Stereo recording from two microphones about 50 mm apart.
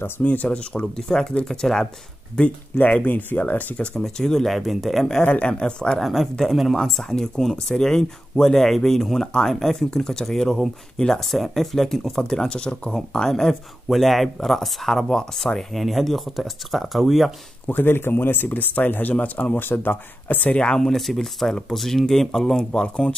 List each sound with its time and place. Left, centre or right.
0.2 s speech: left
0.9 s speech: centre
2.8 s speech: left
4.0 s speech: centre
5.2 s speech: left
5.9 s speech: centre
17.6 s speech: left
20.4 s speech: centre
20.8 s speech: centre
22.7 s speech: centre